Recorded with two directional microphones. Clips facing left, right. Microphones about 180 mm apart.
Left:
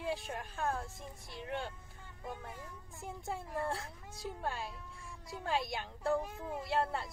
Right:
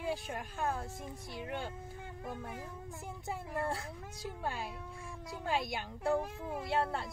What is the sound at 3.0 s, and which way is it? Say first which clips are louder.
Speech: left 2 dB; centre (ahead or behind).